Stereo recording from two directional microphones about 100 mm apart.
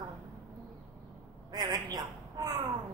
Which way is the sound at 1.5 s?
40° right (ahead or behind).